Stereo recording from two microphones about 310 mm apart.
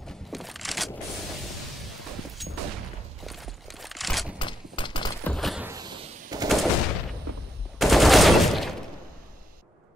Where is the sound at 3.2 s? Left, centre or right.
Centre.